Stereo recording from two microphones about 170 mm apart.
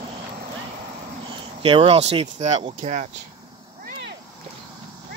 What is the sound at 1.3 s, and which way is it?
Speech, 30° right (ahead or behind).